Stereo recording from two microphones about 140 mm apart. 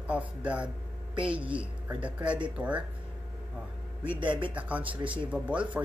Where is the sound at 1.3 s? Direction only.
35° right (ahead or behind).